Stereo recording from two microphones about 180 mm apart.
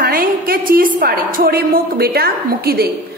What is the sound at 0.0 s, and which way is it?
A woman's voice, 55° right (ahead or behind).